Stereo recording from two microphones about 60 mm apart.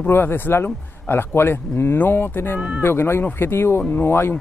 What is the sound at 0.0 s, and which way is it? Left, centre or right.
A man's voice, left.